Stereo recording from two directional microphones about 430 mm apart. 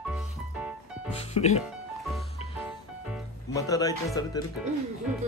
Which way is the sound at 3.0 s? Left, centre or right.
Centre.